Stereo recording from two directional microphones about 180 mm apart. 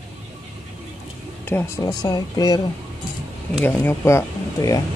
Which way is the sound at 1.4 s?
15° left (ahead or behind).